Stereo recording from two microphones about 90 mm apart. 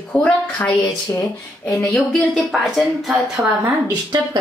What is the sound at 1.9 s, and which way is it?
A woman's voice, 5° left (ahead or behind).